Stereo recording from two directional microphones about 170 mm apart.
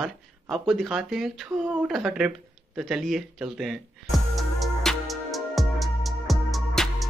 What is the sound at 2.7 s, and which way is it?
Music, centre (ahead or behind).